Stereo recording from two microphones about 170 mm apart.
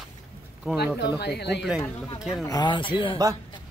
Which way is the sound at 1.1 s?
75° left (ahead or behind).